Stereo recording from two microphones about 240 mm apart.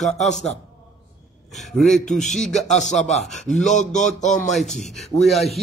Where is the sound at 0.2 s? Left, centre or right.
Left.